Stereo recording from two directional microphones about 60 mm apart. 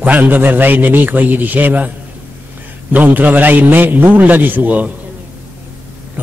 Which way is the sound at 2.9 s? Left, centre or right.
Right.